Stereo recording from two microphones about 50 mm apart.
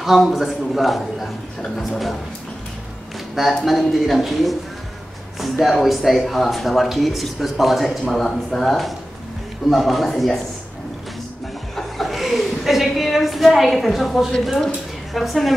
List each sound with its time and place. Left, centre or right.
0.0 s speech: centre
3.6 s speech: centre
8.0 s speech: centre
11.7 s chuckle: centre
14.4 s speech: centre